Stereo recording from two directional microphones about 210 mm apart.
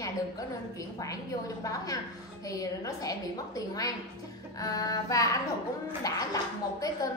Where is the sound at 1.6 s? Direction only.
15° left (ahead or behind).